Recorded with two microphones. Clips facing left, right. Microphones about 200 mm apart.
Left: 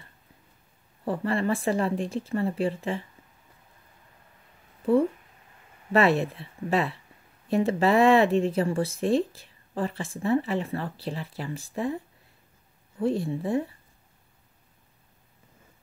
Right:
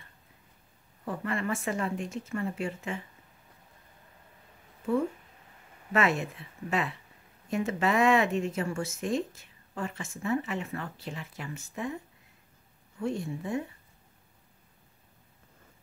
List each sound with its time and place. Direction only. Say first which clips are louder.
1.0 s speech: left 6 dB; 35° left (ahead or behind)
4.8 s speech: left 6 dB; 35° left (ahead or behind)
13.0 s speech: left 6 dB; 35° left (ahead or behind)